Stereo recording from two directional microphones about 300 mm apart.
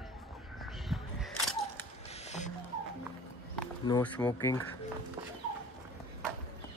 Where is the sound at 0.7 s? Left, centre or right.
Centre.